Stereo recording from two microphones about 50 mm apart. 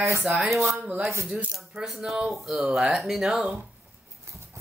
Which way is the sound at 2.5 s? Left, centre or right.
Centre.